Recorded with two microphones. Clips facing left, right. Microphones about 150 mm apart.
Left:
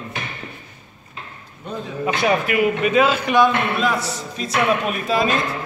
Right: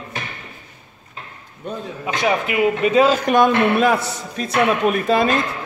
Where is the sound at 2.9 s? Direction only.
40° right (ahead or behind); by 4.6 s 55° right (ahead or behind).